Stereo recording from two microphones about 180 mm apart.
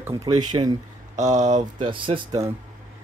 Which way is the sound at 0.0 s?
20° right (ahead or behind).